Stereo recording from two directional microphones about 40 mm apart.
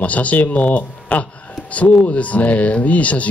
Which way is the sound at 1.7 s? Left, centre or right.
Left.